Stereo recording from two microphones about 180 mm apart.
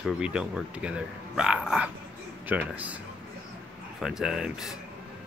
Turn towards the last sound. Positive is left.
turn(degrees=-5)  # may be behind; listen again after turning